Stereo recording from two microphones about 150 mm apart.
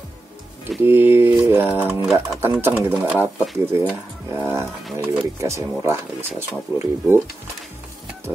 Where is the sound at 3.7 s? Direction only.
15° right (ahead or behind).